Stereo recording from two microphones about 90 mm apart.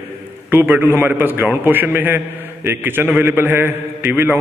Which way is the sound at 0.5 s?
20° right (ahead or behind).